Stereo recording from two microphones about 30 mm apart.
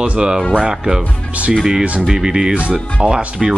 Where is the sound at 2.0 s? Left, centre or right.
Right.